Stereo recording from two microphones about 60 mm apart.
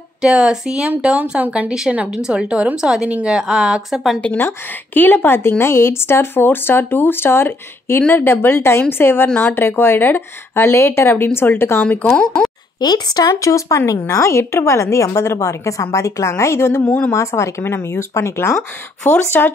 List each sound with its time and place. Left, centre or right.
0.2 s speech: centre
4.4 s a woman's voice: left
11.8 s speech: left
12.1 s speech: centre
13.1 s a woman's voice: left
14.1 s a woman's voice: left